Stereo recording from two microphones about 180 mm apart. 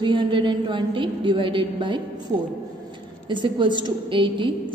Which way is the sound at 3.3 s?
25° right (ahead or behind).